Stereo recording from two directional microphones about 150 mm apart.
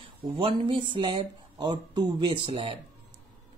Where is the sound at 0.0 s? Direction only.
35° right (ahead or behind).